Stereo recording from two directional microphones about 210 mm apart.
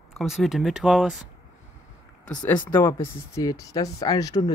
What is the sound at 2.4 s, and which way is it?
Speech, 10° left (ahead or behind).